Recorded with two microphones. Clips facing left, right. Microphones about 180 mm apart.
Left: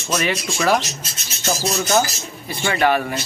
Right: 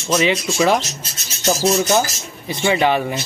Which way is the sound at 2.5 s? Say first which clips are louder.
Right 2 dB; 20° right (ahead or behind).